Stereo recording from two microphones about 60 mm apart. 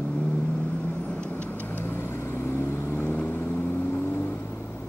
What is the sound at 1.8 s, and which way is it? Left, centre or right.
Vehicle, left.